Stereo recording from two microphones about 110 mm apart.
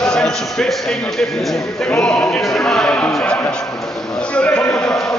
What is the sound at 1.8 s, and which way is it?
A man's voice, 10° left (ahead or behind).